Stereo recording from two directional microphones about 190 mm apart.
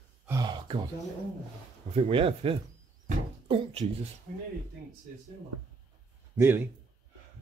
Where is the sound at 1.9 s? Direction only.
30° right (ahead or behind).